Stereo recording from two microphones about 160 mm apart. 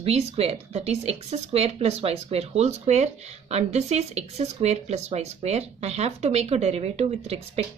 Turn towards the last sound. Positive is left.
turn(degrees=-40)  # may be behind; listen again after turning